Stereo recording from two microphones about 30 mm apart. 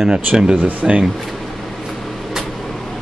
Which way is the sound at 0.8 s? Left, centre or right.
Centre.